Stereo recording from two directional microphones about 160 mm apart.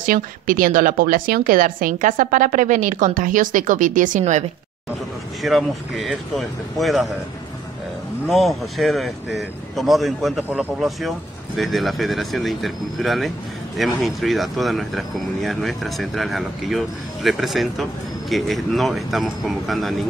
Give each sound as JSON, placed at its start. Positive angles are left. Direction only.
{"t": 0.0, "sound": "speech", "side_deg": -60}
{"t": 5.4, "sound": "speech", "side_deg": 0}
{"t": 8.3, "sound": "speech", "side_deg": 0}